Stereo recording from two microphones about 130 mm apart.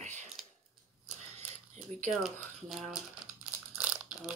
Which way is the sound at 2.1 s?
Centre (ahead or behind).